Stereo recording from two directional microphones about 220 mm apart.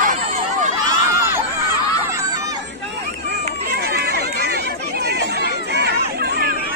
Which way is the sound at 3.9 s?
45° right (ahead or behind).